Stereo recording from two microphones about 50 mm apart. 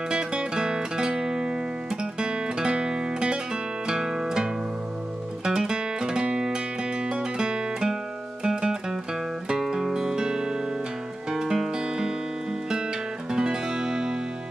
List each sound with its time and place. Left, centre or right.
0.1 s music: centre
13.3 s music: centre